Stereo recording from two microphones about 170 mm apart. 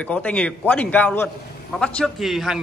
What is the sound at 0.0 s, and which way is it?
A man's voice, 10° left (ahead or behind).